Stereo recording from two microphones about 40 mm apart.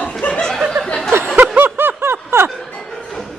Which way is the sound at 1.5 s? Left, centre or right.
Right.